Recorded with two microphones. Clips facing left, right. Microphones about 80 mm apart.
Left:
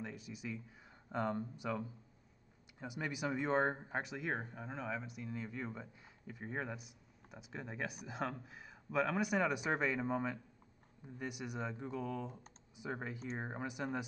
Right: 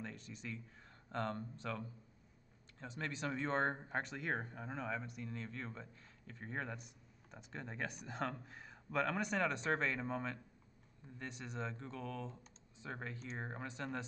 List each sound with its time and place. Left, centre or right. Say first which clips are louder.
0.0 s speech: left 3 dB; centre